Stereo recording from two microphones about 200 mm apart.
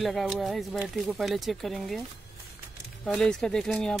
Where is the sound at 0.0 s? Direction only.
Centre (ahead or behind).